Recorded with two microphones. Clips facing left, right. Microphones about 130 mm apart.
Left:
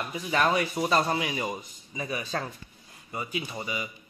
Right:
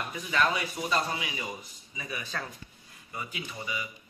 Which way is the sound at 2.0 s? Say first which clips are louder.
Left 5 dB; 35° left (ahead or behind).